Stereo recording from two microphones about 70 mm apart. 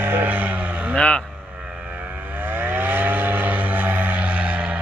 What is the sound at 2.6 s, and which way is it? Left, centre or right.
Vehicle, right.